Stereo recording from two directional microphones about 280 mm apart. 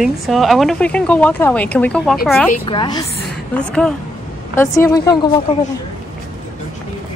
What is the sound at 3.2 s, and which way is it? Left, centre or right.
A woman's voice, centre.